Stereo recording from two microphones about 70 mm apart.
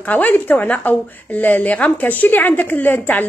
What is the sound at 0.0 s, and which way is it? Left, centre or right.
Speech, left.